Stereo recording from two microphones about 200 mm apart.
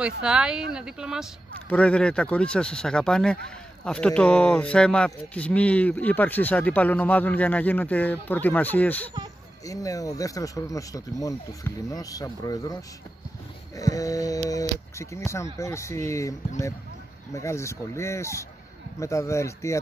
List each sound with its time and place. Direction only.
0.0 s speech: 5° right (ahead or behind); by 12.7 s 20° left (ahead or behind)
13.7 s speech: 15° left (ahead or behind)